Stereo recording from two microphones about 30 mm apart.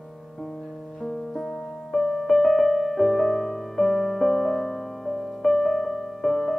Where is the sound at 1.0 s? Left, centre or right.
Centre.